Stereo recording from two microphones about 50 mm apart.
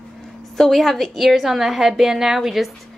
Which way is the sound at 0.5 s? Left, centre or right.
Centre.